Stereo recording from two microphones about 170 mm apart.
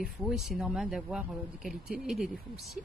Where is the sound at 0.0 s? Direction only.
Centre (ahead or behind).